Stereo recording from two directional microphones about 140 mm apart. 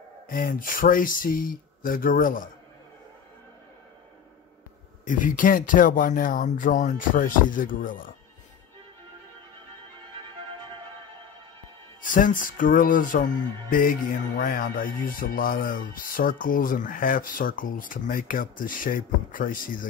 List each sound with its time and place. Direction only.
0.3 s speech: 80° left
5.0 s speech: 70° left (ahead or behind)
12.0 s speech: 70° left (ahead or behind)